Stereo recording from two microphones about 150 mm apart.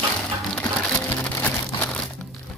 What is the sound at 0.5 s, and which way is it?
Music, 10° left (ahead or behind).